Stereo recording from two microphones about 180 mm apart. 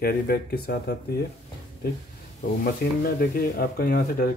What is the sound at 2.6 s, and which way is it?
Speech, 55° left (ahead or behind).